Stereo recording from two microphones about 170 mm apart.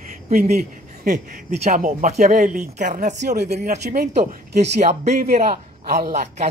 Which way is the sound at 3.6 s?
50° right (ahead or behind).